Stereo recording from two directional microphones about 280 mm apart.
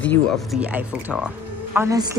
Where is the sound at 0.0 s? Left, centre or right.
Centre.